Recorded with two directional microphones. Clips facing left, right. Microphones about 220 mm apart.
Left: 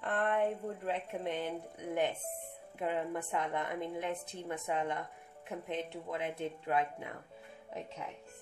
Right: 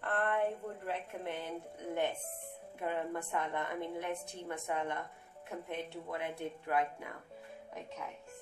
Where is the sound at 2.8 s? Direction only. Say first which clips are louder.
Left 2 dB; 20° left (ahead or behind).